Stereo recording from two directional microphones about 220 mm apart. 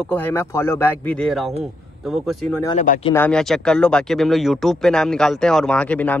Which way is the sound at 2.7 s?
35° left (ahead or behind).